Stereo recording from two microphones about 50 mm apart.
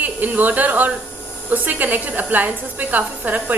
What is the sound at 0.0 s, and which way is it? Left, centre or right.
A woman's voice, right.